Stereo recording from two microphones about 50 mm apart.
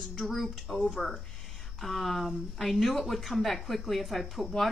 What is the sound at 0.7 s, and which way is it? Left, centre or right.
A woman's voice, centre.